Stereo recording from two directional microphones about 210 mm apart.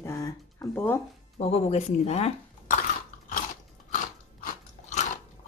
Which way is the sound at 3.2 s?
40° left (ahead or behind).